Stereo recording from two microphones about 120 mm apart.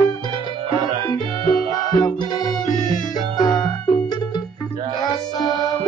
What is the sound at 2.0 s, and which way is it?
Music, 35° left (ahead or behind).